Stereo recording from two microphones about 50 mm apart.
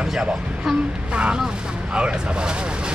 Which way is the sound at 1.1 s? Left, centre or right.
Right.